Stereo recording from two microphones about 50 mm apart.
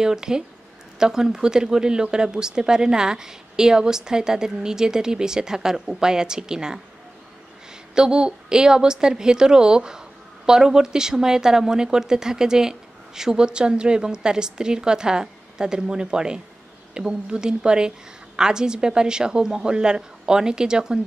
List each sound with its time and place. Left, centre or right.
0.0 s a woman's voice: centre
7.9 s a woman's voice: centre